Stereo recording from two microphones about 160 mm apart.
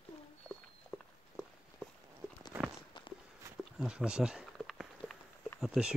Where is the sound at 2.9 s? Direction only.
30° left (ahead or behind).